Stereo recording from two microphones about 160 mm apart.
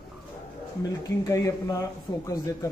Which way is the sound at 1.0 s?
20° left (ahead or behind).